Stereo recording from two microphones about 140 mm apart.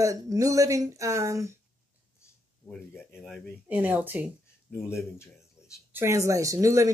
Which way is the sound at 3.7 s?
10° right (ahead or behind).